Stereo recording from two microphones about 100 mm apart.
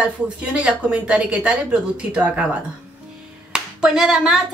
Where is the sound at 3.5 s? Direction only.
5° right (ahead or behind).